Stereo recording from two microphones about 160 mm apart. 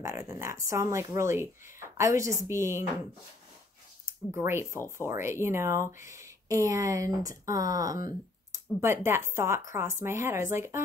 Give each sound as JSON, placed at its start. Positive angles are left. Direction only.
{"t": 0.0, "sound": "speech", "side_deg": -15}
{"t": 4.0, "sound": "speech", "side_deg": -15}